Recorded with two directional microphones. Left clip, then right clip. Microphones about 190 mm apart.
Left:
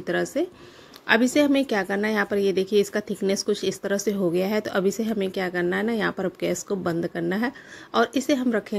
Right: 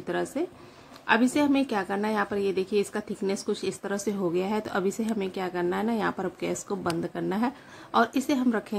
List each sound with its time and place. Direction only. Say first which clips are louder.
0.0 s a woman's voice: left 5 dB; 15° left (ahead or behind)